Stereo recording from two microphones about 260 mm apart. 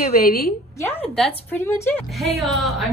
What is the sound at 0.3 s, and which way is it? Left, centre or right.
Speech, left.